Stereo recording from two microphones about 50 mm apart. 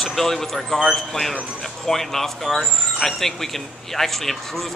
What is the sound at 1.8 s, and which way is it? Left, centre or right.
Speech, centre.